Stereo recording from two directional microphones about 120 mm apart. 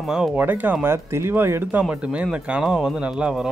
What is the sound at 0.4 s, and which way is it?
Speech, 15° right (ahead or behind).